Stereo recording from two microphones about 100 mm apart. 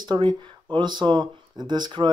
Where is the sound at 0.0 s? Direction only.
50° right (ahead or behind).